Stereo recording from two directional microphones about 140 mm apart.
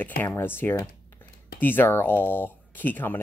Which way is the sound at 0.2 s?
15° left (ahead or behind).